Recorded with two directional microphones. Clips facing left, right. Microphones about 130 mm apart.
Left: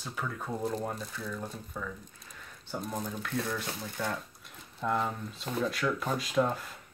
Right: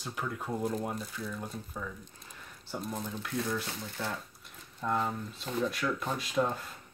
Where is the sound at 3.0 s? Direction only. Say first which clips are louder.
Left 1 dB; 5° right (ahead or behind).